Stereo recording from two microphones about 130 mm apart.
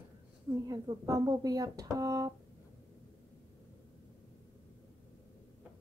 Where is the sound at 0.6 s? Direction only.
30° right (ahead or behind).